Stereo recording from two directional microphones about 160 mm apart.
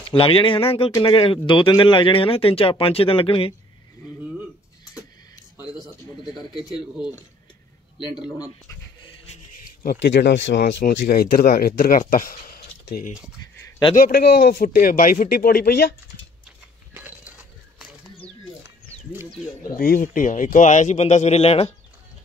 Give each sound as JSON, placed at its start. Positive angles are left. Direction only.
{"t": 0.1, "sound": "speech", "side_deg": 35}
{"t": 9.8, "sound": "speech", "side_deg": 90}
{"t": 19.8, "sound": "speech", "side_deg": 60}